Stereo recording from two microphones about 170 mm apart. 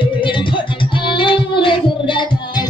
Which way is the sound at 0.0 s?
30° left (ahead or behind).